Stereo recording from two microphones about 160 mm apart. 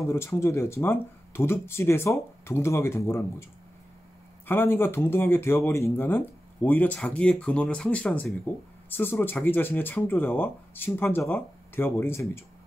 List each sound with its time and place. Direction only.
0.0 s speech: 15° left (ahead or behind)
4.5 s speech: 15° left (ahead or behind)